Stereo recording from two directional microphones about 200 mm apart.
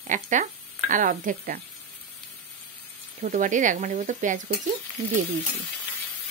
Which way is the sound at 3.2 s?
40° right (ahead or behind).